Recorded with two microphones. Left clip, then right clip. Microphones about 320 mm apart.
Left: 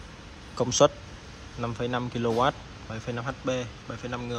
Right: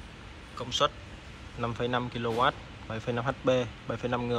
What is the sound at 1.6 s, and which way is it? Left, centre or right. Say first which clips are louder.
Speech: even; centre.